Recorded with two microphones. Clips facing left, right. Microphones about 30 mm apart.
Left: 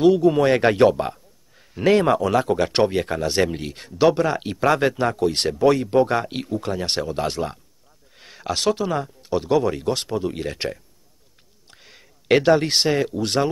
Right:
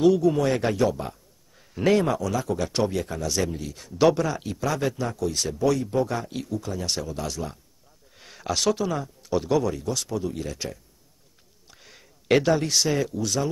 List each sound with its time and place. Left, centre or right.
0.0 s speech: left
8.2 s speech: centre
8.9 s speech: left
9.3 s speech: centre
9.7 s speech: left
11.7 s a sound: centre
12.4 s speech: left
13.1 s speech: left